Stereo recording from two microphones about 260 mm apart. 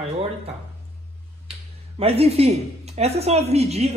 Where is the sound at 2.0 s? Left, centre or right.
Right.